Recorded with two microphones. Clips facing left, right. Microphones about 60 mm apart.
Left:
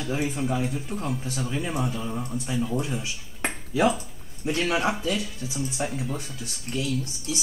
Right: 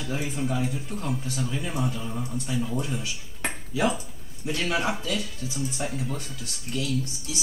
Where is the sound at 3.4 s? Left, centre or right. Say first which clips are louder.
Left 3 dB; left.